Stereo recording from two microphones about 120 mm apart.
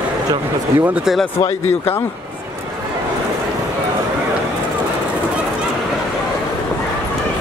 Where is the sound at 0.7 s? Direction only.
15° right (ahead or behind).